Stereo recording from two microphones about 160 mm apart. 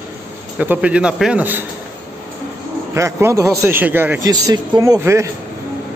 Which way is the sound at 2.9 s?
15° right (ahead or behind).